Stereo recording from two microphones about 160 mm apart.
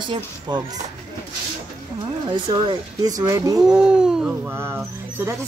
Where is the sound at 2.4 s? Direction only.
30° right (ahead or behind).